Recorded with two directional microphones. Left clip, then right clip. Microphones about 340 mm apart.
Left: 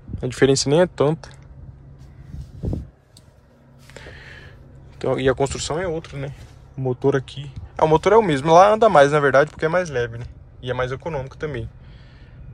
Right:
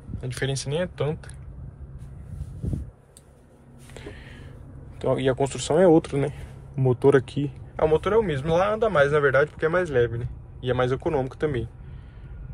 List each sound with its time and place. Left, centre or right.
0.2 s speech: centre
3.9 s sniff: centre
4.9 s speech: centre
5.9 s speech: centre
7.7 s speech: centre